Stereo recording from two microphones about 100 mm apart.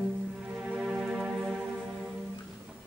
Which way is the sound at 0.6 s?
5° right (ahead or behind).